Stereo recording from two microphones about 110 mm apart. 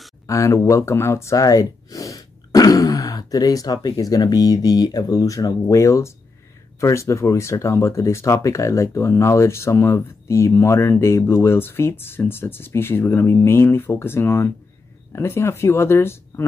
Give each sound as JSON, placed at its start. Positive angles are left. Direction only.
{"t": 0.3, "sound": "speech", "side_deg": 30}